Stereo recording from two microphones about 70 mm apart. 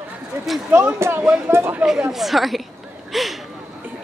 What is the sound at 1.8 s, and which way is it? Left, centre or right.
Speech, centre.